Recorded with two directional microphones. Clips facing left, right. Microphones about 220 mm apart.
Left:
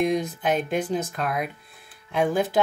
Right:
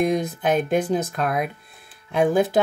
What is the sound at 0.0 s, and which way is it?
Speech, 50° right (ahead or behind).